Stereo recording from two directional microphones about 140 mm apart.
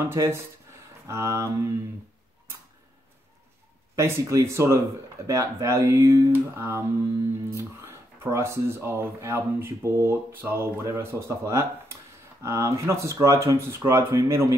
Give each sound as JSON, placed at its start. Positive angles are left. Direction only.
{"t": 0.1, "sound": "speech", "side_deg": -20}
{"t": 3.9, "sound": "speech", "side_deg": -20}